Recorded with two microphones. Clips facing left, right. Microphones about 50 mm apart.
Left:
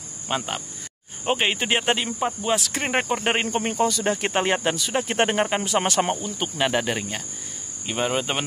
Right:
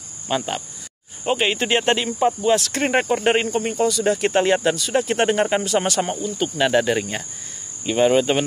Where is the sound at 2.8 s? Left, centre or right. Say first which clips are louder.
Right 4 dB; centre.